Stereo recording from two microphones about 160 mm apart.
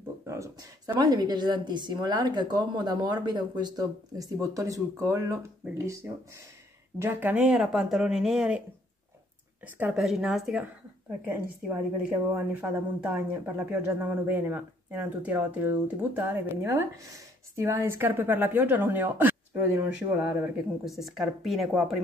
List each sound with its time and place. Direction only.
0.2 s a sound: 20° right (ahead or behind)
0.9 s speech: 25° right (ahead or behind); by 8.6 s 5° right (ahead or behind)
9.8 s a woman's voice: 5° right (ahead or behind)
20.8 s speech: centre (ahead or behind)